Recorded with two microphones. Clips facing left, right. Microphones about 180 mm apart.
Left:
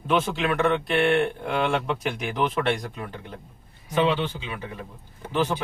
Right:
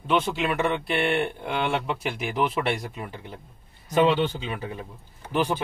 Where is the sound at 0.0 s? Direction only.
Centre (ahead or behind).